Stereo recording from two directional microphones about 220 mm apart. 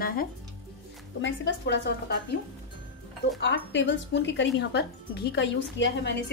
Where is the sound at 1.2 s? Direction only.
55° left (ahead or behind).